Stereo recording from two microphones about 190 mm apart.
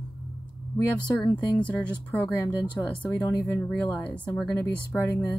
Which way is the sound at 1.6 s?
5° left (ahead or behind).